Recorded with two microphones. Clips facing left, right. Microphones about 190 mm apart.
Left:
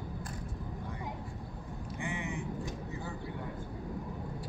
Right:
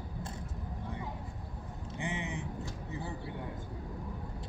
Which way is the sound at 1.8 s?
20° right (ahead or behind).